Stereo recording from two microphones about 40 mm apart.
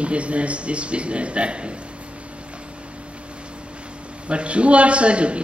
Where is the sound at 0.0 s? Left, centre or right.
Right.